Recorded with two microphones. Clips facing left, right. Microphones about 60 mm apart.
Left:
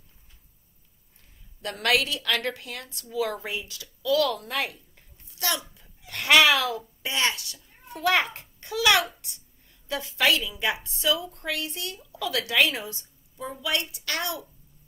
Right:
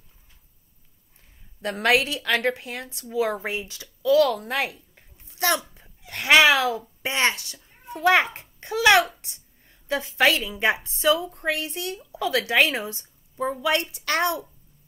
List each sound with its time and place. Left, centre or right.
1.6 s a woman's voice: right
13.4 s a woman's voice: right